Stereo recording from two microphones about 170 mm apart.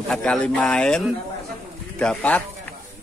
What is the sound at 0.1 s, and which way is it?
Speech, 5° left (ahead or behind).